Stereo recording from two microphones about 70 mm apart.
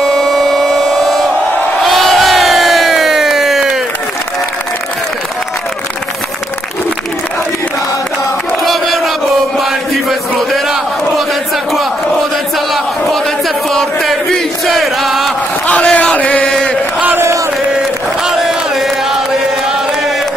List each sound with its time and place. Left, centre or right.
0.0 s siren: centre
1.8 s crowd: centre
8.6 s crowd: centre
10.5 s crowd: centre
13.7 s chant: centre
15.6 s chant: left
18.2 s chant: centre